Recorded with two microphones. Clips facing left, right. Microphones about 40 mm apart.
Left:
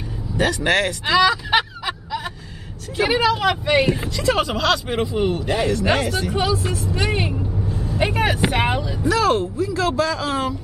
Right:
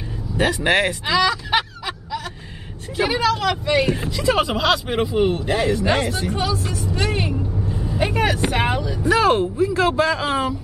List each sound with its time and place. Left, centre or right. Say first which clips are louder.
0.4 s speech: right 1 dB; centre
1.0 s speech: left 2 dB; centre
4.2 s speech: right 2 dB; centre
6.3 s speech: left 2 dB; centre
6.8 s vehicle: even; centre
7.7 s vehicle: even; centre
8.0 s vehicle: even; centre
8.5 s speech: even; centre
9.0 s speech: right 2 dB; right